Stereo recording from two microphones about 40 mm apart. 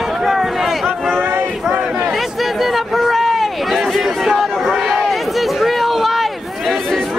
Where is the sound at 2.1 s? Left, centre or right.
Centre.